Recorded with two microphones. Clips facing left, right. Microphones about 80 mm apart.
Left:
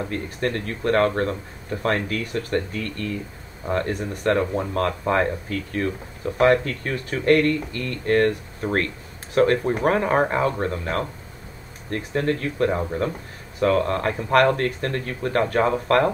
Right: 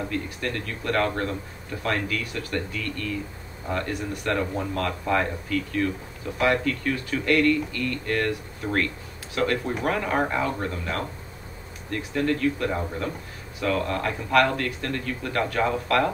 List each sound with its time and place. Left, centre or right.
0.1 s speech: left